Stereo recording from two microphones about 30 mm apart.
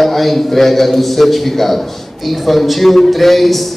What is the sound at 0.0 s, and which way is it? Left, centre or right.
A man's voice, centre.